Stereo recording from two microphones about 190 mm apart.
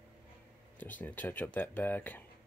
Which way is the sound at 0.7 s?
10° left (ahead or behind).